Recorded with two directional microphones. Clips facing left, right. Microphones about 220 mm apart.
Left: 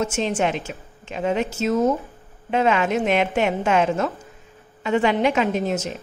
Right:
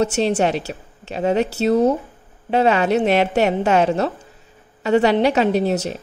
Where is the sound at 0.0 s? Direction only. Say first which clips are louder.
Right 4 dB; 35° right (ahead or behind).